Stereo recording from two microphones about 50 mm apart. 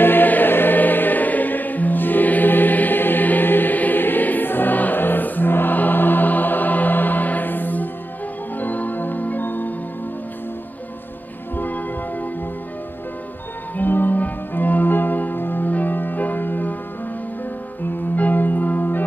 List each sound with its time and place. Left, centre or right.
0.0 s music: left
11.5 s music: left
13.7 s music: left
18.1 s church bell: left